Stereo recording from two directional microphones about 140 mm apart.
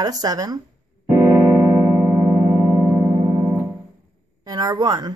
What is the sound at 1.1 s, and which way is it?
Music, 20° right (ahead or behind).